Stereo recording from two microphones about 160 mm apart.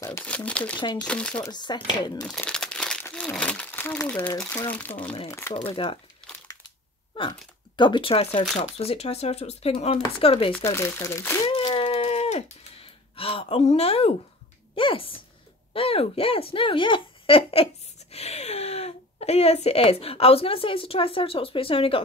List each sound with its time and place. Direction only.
0.0 s speech: 15° left (ahead or behind)
1.4 s speech: 25° left (ahead or behind)
2.2 s crumpling: 5° left (ahead or behind)
4.6 s speech: 10° left (ahead or behind)
5.7 s speech: 35° left (ahead or behind)
7.2 s speech: 30° left (ahead or behind)
10.5 s speech: 15° left (ahead or behind)
11.5 s a sound: 30° left (ahead or behind)
14.8 s a woman's voice: 35° left (ahead or behind)